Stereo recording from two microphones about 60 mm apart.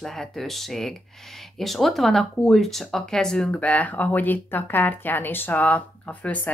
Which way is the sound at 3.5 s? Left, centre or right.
Left.